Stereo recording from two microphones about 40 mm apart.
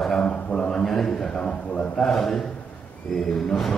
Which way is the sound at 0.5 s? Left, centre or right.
Left.